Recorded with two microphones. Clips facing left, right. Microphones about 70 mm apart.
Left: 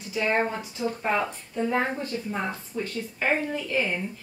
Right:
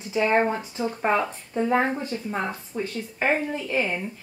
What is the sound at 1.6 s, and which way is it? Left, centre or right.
Speech, centre.